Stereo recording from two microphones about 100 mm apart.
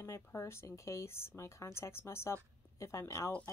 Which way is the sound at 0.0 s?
25° left (ahead or behind).